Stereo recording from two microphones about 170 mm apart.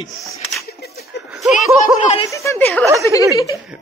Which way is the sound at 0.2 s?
Centre (ahead or behind).